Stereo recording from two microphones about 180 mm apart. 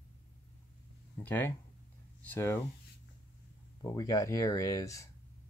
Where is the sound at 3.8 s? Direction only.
20° left (ahead or behind).